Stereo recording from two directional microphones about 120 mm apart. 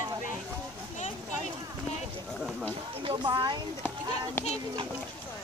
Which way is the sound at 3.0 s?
40° right (ahead or behind).